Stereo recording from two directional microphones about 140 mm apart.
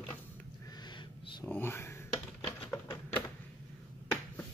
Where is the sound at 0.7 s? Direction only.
30° left (ahead or behind).